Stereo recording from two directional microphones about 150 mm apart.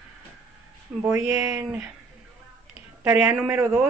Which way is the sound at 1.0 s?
10° right (ahead or behind).